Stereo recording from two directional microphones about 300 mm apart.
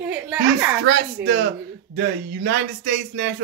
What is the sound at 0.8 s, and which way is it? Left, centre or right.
A man's voice, right.